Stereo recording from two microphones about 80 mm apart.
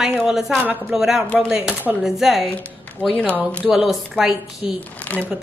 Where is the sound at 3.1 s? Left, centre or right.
Centre.